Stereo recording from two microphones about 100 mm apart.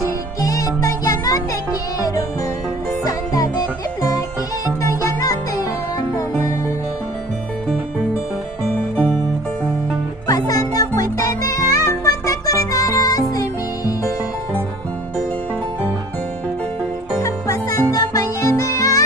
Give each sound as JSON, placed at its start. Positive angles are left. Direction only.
{"t": 0.0, "sound": "music", "side_deg": 35}
{"t": 4.6, "sound": "music", "side_deg": 35}
{"t": 10.2, "sound": "music", "side_deg": 35}
{"t": 17.2, "sound": "music", "side_deg": 35}